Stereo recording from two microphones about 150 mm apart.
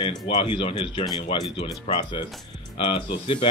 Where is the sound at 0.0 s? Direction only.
35° left (ahead or behind).